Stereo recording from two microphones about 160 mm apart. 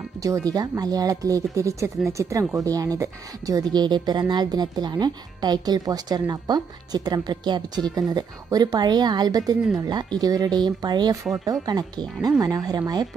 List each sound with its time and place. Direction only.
0.5 s speech: 25° right (ahead or behind)